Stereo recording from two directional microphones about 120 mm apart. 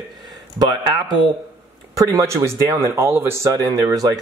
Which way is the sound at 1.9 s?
25° right (ahead or behind).